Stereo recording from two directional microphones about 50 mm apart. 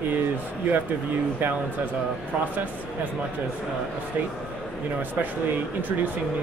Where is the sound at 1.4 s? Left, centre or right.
Right.